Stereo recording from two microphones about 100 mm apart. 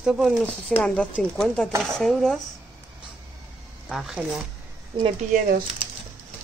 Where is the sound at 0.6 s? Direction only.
10° left (ahead or behind).